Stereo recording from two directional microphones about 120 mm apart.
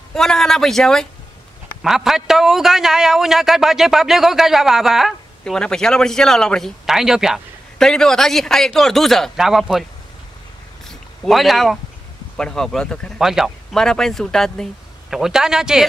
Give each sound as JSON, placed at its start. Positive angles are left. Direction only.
{"t": 0.1, "sound": "speech", "side_deg": 5}
{"t": 10.9, "sound": "a sound", "side_deg": 0}
{"t": 12.4, "sound": "speech", "side_deg": 5}